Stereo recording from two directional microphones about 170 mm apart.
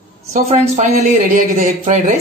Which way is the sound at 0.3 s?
45° right (ahead or behind).